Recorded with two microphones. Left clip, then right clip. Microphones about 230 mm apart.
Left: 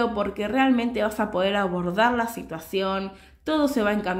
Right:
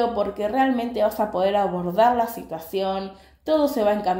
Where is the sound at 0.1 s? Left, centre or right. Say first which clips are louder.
Right 2 dB; left.